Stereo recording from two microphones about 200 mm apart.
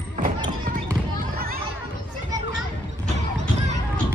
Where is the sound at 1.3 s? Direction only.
50° right (ahead or behind).